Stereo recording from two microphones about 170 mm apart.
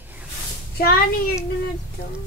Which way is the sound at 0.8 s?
65° left (ahead or behind).